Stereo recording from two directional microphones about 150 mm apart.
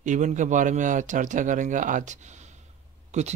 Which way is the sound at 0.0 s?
55° right (ahead or behind).